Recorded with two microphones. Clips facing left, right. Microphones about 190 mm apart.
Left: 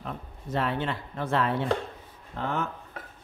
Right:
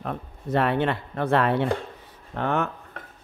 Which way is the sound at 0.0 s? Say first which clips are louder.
Right 6 dB; 65° right (ahead or behind).